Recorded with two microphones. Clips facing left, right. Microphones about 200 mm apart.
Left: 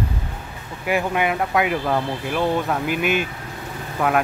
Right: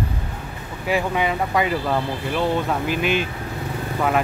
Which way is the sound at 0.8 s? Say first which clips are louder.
Even; 5° left (ahead or behind).